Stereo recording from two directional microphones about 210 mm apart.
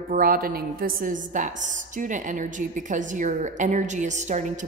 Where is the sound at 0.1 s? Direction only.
45° right (ahead or behind).